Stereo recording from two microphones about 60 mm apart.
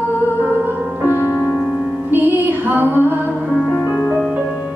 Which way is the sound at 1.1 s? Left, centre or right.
Left.